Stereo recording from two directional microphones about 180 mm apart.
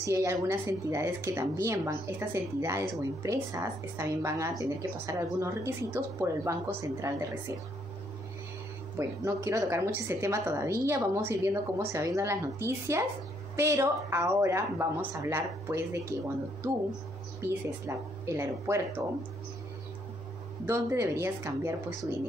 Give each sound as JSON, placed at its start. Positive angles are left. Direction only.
{"t": 0.0, "sound": "a woman's voice", "side_deg": -15}
{"t": 8.9, "sound": "a woman's voice", "side_deg": -15}
{"t": 17.4, "sound": "a woman's voice", "side_deg": -15}
{"t": 20.6, "sound": "a woman's voice", "side_deg": -15}